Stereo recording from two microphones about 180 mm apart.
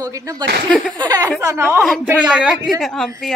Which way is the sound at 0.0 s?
20° right (ahead or behind).